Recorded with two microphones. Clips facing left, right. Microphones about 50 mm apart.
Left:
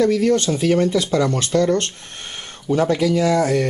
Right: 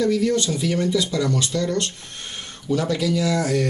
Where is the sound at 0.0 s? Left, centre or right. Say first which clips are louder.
Left 4 dB; left.